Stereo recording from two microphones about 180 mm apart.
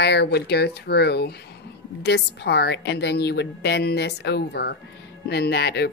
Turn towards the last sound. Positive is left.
turn(degrees=65)  # may be behind; listen again after turning